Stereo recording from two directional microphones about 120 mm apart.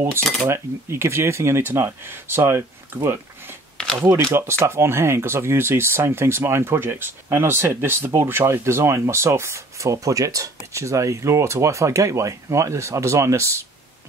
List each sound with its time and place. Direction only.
0.5 s speech: 20° right (ahead or behind)
3.7 s a sound: 5° left (ahead or behind)
4.0 s speech: 20° right (ahead or behind)